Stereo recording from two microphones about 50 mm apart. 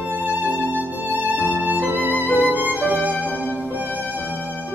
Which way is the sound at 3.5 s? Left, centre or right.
Right.